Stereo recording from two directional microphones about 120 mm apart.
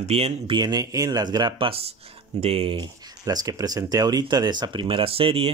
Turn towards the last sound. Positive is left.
turn(degrees=-50)  # may be behind; listen again after turning